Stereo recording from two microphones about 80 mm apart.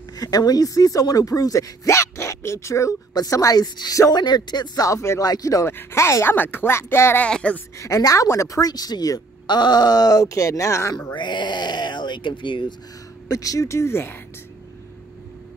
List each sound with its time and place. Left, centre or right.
0.1 s speech: left
5.2 s speech: left
5.7 s speech: left
6.3 s speech: left
7.2 s speech: centre
7.7 s speech: left
9.5 s speech: left
11.1 s speech: left
13.3 s speech: left